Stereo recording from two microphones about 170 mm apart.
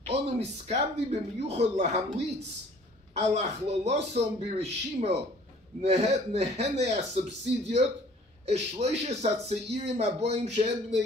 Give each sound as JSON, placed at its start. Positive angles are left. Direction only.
{"t": 0.0, "sound": "speech", "side_deg": -40}
{"t": 8.5, "sound": "speech", "side_deg": -40}